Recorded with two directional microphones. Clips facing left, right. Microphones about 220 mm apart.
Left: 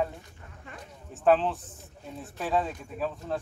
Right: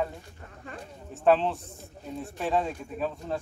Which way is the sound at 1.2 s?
Centre (ahead or behind).